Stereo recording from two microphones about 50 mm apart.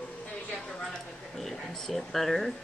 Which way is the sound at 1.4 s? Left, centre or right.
Centre.